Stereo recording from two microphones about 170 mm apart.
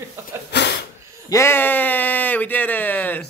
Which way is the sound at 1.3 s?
15° left (ahead or behind).